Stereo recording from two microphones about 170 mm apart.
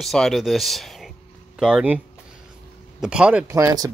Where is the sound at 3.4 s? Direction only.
20° right (ahead or behind).